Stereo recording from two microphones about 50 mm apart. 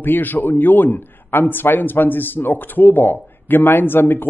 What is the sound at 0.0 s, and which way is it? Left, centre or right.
A man's voice, left.